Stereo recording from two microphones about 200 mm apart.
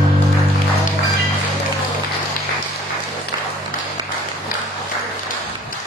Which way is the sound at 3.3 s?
25° right (ahead or behind).